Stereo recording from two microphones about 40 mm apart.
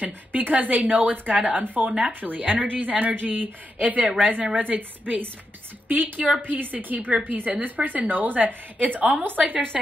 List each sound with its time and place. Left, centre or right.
0.0 s a woman's voice: right
1.9 s speech: right
2.2 s a woman's voice: right